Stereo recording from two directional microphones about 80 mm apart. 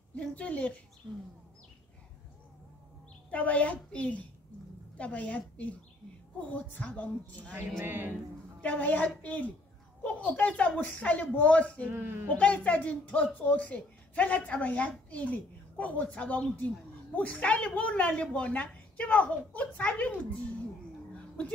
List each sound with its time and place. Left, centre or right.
0.3 s speech: centre
3.3 s a woman's voice: centre
7.8 s speech: right
8.5 s a woman's voice: centre
11.9 s speech: right
12.4 s speech: centre